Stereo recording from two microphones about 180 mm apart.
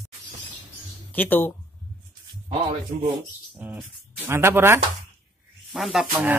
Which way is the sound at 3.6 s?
10° right (ahead or behind).